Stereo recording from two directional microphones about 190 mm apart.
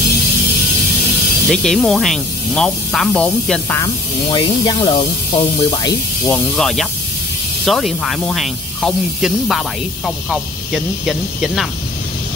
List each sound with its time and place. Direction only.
1.5 s speech: 5° left (ahead or behind)
3.7 s speech: 20° left (ahead or behind)
6.3 s speech: centre (ahead or behind)